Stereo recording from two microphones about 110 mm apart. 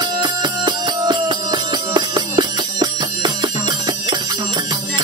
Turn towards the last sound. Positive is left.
turn(degrees=-45)  # may be behind; listen again after turning